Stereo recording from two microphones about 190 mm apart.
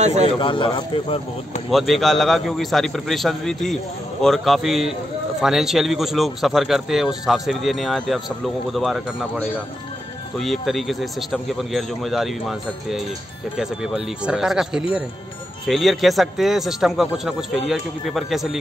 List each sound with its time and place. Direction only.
0.0 s a man's voice: 35° right (ahead or behind)
0.4 s speech: 25° left (ahead or behind)
1.7 s speech: centre (ahead or behind)
10.4 s speech: centre (ahead or behind)